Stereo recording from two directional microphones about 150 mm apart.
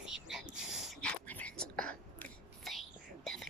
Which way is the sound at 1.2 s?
10° left (ahead or behind).